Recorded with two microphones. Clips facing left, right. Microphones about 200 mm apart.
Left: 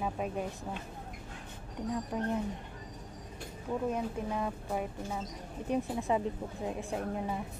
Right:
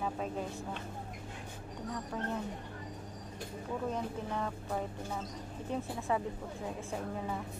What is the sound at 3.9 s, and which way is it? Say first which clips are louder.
Speech: left 3 dB; 10° left (ahead or behind).